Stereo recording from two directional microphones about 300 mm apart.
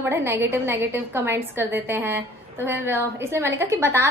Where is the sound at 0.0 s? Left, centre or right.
Centre.